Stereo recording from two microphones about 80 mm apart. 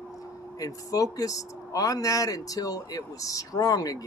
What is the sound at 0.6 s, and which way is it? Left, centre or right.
Speech, left.